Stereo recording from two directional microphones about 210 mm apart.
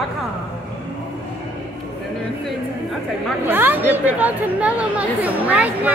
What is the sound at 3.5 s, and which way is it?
Speech, 10° right (ahead or behind).